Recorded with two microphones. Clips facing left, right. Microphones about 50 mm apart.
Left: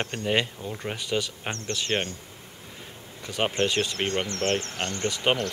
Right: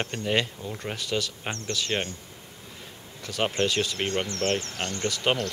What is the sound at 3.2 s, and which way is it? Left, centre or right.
Speech, centre.